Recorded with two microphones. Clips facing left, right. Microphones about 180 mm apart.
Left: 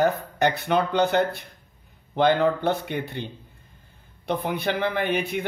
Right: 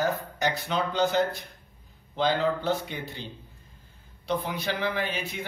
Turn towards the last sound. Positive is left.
turn(degrees=60)  # may be behind; listen again after turning